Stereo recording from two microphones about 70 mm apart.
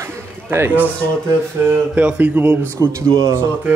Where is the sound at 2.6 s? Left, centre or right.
Right.